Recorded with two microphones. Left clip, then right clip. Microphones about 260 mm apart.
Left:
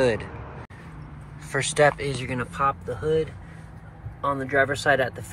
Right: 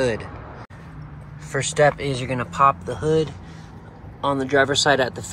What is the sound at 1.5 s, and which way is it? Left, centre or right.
Speech, centre.